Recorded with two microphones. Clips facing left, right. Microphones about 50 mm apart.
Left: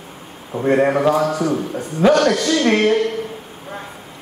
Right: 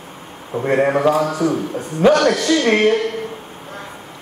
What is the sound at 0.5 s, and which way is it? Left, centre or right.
Speech, right.